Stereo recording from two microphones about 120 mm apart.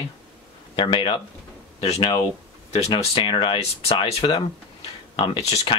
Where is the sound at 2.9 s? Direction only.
40° left (ahead or behind).